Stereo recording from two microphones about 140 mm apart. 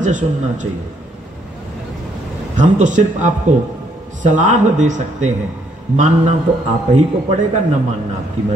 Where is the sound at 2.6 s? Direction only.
60° right (ahead or behind).